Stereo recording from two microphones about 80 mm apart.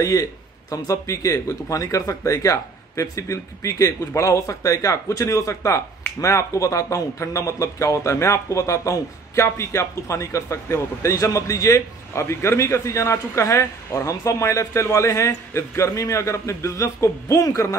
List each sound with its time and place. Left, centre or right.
0.0 s speech: left